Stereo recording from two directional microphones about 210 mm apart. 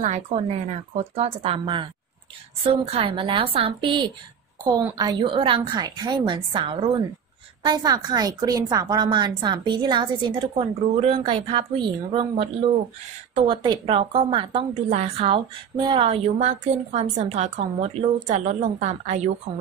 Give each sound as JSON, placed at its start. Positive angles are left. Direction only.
{"t": 0.0, "sound": "a woman's voice", "side_deg": -30}